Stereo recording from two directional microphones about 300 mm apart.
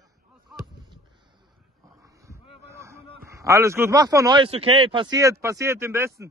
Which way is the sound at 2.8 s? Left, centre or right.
Centre.